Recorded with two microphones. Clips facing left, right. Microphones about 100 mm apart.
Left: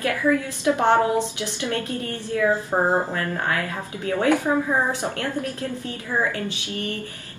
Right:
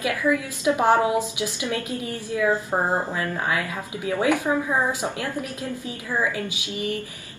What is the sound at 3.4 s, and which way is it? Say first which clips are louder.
Speech: even; 15° right (ahead or behind).